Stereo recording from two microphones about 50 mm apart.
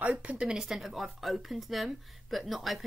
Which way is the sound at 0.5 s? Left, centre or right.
Centre.